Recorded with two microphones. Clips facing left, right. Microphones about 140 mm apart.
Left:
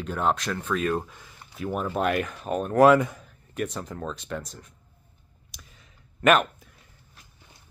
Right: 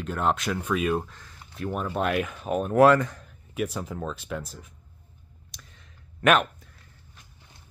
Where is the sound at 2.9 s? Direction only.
15° left (ahead or behind).